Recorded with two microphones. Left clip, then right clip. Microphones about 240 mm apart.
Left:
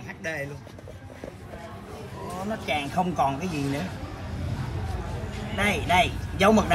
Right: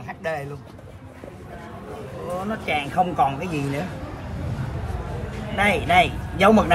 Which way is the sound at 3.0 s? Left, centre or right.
Left.